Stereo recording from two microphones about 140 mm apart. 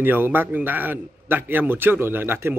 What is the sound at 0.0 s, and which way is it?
A man's voice, 15° right (ahead or behind).